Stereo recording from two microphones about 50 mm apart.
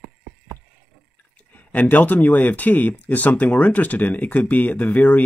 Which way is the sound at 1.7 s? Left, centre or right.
Left.